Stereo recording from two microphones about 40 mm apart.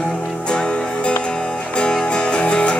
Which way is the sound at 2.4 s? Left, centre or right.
Left.